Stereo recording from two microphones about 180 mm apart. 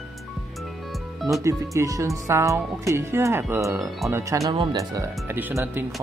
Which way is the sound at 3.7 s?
Centre (ahead or behind).